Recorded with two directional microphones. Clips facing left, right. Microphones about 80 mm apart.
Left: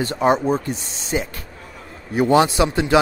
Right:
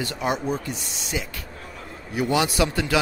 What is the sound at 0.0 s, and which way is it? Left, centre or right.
A man's voice, left.